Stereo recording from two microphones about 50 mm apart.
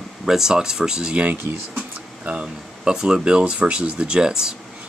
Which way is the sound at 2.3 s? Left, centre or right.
Right.